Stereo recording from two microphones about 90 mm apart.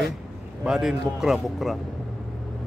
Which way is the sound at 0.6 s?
5° right (ahead or behind).